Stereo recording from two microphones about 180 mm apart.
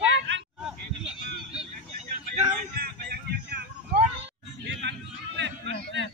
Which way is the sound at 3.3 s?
65° right (ahead or behind).